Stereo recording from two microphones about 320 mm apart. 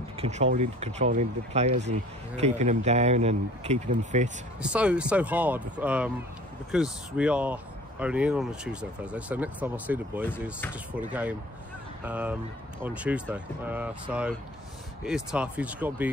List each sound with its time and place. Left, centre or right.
0.2 s speech: right
4.6 s speech: centre